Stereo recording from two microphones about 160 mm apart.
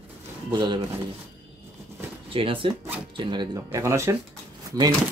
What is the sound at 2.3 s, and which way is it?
Speech, 35° right (ahead or behind).